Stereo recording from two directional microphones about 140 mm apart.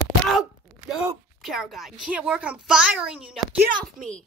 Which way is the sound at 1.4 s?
Centre (ahead or behind).